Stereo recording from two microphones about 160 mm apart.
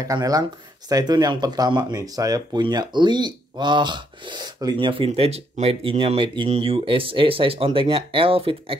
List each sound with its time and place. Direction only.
0.0 s speech: 20° right (ahead or behind)